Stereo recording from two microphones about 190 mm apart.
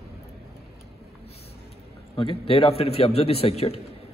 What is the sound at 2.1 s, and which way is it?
A man's voice, 30° left (ahead or behind).